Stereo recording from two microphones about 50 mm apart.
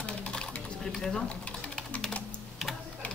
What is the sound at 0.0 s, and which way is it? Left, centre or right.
Typing, left.